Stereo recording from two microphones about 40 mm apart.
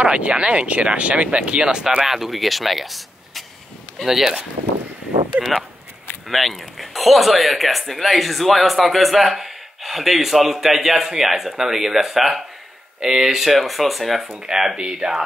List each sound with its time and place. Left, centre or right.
0.0 s speech: right
2.0 s speech: centre
5.4 s speech: right
6.2 s speech: centre
14.2 s speech: centre